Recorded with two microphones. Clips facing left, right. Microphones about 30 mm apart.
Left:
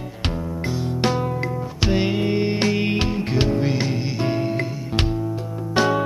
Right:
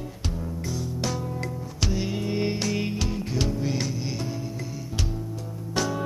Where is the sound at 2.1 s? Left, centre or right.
Left.